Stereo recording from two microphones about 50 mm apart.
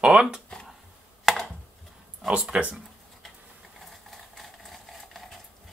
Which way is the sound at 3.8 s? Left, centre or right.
Centre.